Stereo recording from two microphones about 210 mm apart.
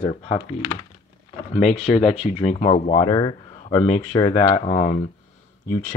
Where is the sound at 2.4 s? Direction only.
30° left (ahead or behind).